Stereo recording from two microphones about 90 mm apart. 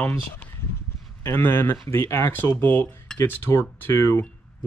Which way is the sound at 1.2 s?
25° left (ahead or behind).